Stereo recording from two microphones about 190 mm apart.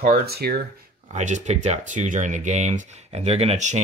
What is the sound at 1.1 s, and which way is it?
Speech, 40° right (ahead or behind).